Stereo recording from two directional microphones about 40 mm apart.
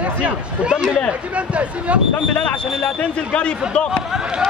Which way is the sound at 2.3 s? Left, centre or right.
Left.